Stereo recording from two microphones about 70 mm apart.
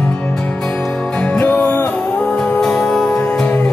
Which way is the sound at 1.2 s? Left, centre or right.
Centre.